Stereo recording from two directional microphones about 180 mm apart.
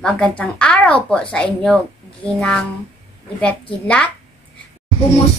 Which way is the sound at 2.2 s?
5° left (ahead or behind).